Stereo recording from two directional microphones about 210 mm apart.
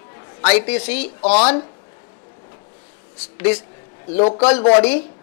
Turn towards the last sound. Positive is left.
turn(degrees=10)  # may be behind; listen again after turning